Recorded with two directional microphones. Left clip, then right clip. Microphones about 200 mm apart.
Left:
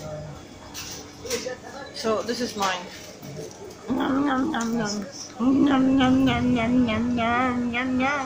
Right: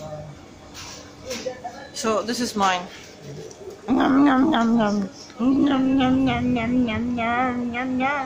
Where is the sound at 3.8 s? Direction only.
30° right (ahead or behind).